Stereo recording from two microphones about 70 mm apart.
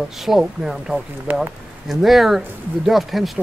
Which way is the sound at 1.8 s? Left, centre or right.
Centre.